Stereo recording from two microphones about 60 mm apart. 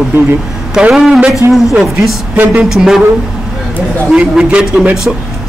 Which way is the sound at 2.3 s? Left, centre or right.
Right.